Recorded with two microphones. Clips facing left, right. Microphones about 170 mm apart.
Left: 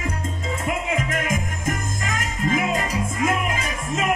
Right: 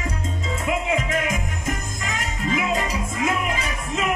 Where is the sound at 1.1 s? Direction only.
50° left (ahead or behind).